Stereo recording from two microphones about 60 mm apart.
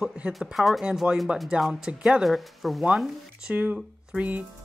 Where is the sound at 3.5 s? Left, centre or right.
Right.